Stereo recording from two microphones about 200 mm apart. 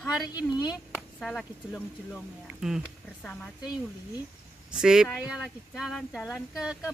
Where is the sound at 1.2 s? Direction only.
Centre (ahead or behind).